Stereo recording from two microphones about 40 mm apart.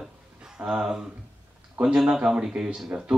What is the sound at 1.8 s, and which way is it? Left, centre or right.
Speech, centre.